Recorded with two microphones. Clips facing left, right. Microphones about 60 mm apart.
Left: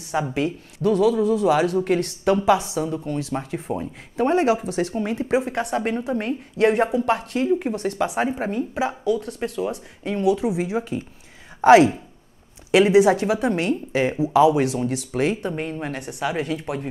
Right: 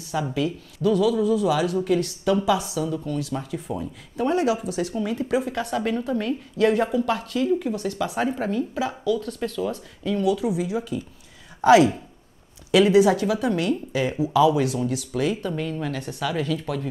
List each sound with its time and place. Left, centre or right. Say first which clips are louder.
0.1 s a woman's voice: left 2 dB; left
8.1 s a woman's voice: left 1 dB; left
14.2 s a woman's voice: left 2 dB; left